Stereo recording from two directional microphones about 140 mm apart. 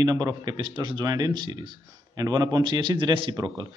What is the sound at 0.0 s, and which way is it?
A man's voice, 25° right (ahead or behind).